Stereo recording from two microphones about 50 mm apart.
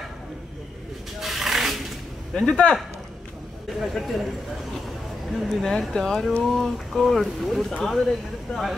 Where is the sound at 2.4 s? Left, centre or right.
Left.